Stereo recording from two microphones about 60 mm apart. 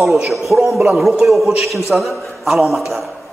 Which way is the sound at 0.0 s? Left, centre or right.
Centre.